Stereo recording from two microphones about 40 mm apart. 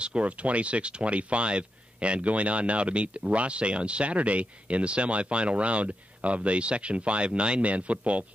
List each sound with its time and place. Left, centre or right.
0.0 s speech: right